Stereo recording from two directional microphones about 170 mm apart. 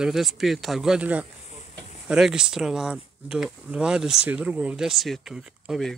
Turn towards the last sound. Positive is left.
turn(degrees=0)  # may be behind; listen again after turning